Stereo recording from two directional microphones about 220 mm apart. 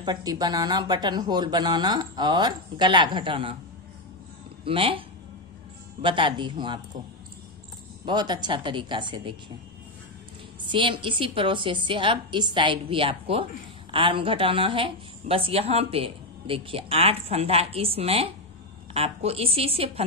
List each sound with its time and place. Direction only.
0.0 s speech: 20° right (ahead or behind)
4.6 s speech: 25° right (ahead or behind)
6.0 s speech: 20° right (ahead or behind)
8.0 s speech: 20° right (ahead or behind)
10.6 s speech: 20° right (ahead or behind)